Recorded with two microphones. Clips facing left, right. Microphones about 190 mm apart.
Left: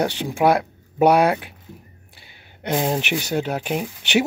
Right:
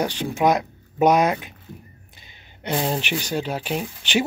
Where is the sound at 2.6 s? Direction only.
15° left (ahead or behind).